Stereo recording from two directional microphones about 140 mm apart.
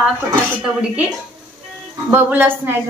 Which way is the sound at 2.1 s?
15° right (ahead or behind).